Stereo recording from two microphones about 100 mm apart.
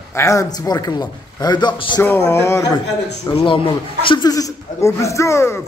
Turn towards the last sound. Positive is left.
turn(degrees=25)  # may be behind; listen again after turning